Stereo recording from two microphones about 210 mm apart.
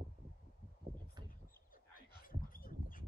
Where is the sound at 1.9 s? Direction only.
40° left (ahead or behind).